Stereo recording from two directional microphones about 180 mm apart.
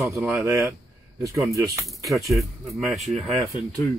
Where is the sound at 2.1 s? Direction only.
Centre (ahead or behind).